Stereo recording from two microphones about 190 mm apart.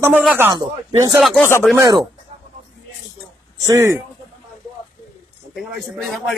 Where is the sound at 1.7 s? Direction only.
20° right (ahead or behind).